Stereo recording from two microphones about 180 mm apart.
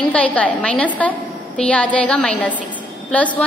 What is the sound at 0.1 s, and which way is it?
A woman's voice, 10° left (ahead or behind).